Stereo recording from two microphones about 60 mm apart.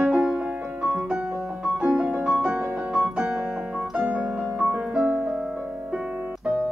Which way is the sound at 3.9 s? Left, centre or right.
Right.